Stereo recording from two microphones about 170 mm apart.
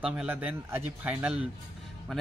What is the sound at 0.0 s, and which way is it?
Speech, 10° right (ahead or behind).